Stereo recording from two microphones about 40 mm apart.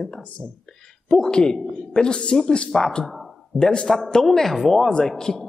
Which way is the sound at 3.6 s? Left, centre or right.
Left.